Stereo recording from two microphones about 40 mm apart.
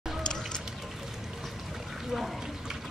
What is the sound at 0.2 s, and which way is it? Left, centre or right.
Music, centre.